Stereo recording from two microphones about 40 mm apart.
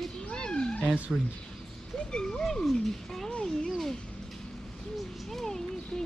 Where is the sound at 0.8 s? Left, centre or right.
Right.